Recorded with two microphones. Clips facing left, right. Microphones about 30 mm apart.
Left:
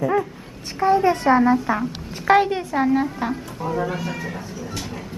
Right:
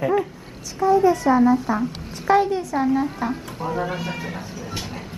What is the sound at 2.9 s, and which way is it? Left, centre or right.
Speech, centre.